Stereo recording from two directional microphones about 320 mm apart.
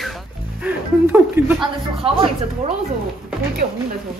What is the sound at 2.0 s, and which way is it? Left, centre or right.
Speech, centre.